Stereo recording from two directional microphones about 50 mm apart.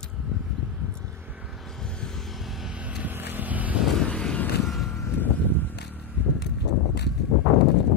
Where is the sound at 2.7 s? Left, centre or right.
Right.